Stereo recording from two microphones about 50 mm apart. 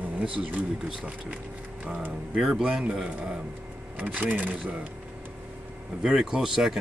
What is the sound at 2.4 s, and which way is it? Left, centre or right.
Speech, centre.